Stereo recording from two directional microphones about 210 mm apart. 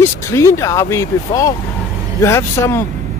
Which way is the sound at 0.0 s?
15° left (ahead or behind).